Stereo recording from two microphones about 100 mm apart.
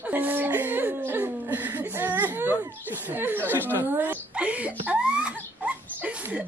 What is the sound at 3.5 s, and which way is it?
Chuckle, 20° right (ahead or behind).